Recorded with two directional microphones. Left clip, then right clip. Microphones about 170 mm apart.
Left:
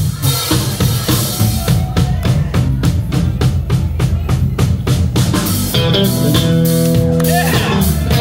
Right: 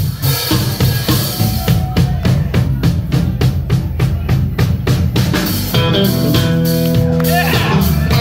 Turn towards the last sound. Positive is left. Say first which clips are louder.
# even
turn(degrees=35)  # may be behind; listen again after turning